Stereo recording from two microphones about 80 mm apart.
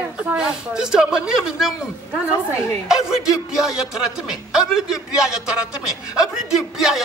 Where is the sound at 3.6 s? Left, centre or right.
Centre.